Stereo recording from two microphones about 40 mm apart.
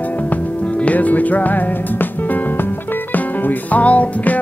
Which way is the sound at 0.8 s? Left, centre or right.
Left.